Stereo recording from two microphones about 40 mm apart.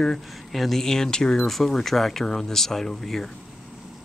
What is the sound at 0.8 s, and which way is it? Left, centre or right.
Speech, centre.